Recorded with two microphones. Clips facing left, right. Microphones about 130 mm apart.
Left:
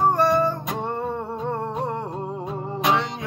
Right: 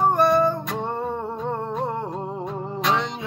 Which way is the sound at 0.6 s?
15° left (ahead or behind).